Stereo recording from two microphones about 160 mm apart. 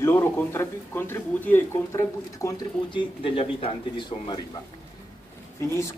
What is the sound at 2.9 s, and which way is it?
Speech, 35° left (ahead or behind).